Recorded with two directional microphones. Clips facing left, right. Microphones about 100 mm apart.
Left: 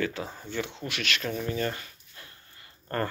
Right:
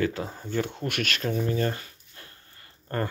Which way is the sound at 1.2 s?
30° right (ahead or behind).